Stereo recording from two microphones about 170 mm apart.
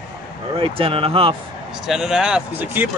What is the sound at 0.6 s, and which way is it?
Speech, 35° right (ahead or behind).